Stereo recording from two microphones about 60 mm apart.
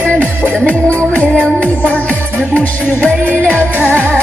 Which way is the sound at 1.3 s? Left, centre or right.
Centre.